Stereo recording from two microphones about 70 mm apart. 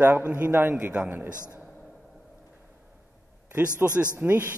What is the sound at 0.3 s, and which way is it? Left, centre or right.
A man's voice, right.